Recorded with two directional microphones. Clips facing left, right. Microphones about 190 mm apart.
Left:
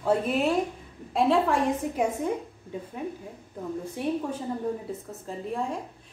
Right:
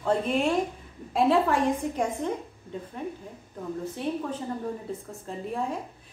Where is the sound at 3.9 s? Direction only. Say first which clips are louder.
Left 3 dB; 10° left (ahead or behind).